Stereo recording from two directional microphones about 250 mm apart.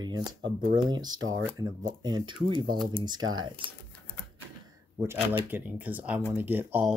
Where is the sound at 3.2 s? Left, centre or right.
Right.